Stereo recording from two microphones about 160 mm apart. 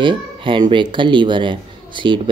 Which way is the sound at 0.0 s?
30° right (ahead or behind).